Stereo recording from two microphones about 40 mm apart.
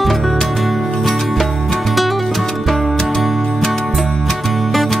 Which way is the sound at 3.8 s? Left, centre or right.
Centre.